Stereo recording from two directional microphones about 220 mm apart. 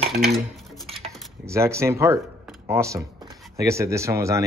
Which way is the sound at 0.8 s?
25° right (ahead or behind).